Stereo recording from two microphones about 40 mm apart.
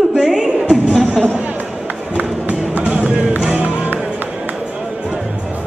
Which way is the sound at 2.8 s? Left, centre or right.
Right.